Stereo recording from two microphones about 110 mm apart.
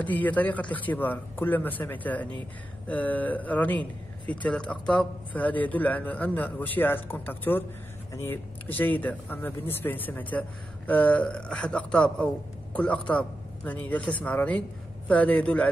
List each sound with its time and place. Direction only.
0.0 s speech: 15° left (ahead or behind)